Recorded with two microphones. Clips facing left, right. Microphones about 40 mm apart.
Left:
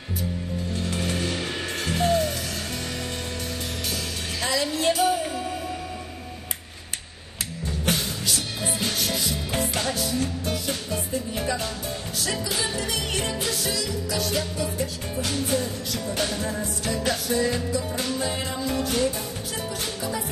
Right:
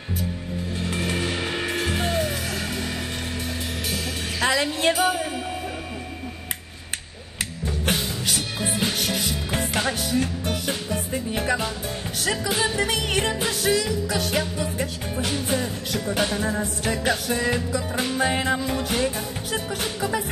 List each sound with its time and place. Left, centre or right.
0.7 s music: centre
4.4 s music: right
8.9 s music: right
9.5 s music: right
9.9 s music: right
12.4 s music: right
12.7 s music: right
15.3 s music: centre; by 18.6 s right
18.7 s music: right